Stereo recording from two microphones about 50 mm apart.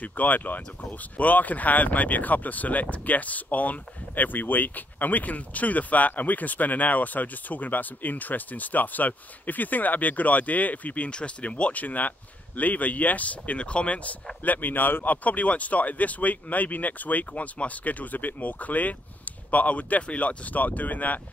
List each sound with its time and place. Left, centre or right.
0.0 s speech: left
11.1 s speech: left
14.4 s speech: left